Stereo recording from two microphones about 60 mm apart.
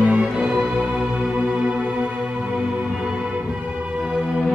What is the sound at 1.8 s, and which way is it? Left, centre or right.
Music, centre.